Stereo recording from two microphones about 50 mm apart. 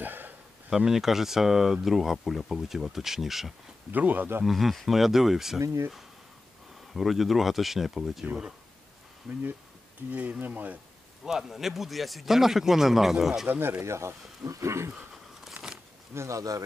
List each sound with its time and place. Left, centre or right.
0.0 s a sound: right
0.7 s speech: centre
3.9 s speech: right
4.5 s speech: centre
6.9 s speech: centre
10.0 s speech: right
11.2 s speech: centre
13.6 s speech: right
13.8 s speech: right
15.5 s a sound: centre
16.2 s speech: right